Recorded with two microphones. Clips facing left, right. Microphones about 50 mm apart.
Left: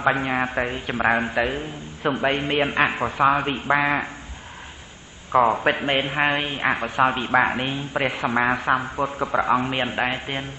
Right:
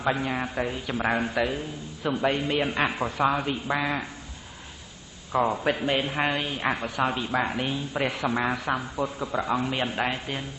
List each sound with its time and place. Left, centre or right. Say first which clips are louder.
0.0 s a man's voice: left 5 dB; left
5.3 s a man's voice: left 6 dB; left